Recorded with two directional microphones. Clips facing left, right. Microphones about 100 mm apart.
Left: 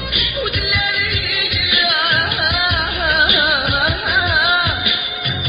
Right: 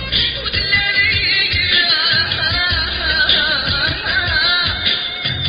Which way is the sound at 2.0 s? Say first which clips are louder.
Left 3 dB; 40° left (ahead or behind).